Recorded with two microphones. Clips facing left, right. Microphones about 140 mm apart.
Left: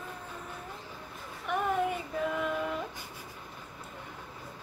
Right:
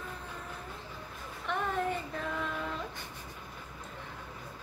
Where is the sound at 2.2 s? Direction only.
10° left (ahead or behind).